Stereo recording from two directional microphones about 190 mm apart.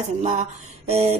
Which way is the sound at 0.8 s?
35° right (ahead or behind).